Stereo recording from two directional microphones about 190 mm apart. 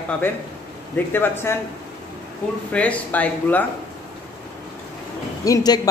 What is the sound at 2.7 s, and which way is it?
Speech, 5° left (ahead or behind).